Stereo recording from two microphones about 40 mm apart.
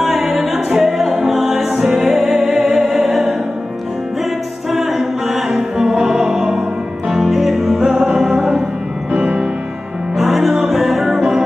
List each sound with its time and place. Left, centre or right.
0.0 s music: centre
4.7 s a capella: centre
5.6 s music: centre
9.1 s music: right
10.1 s music: centre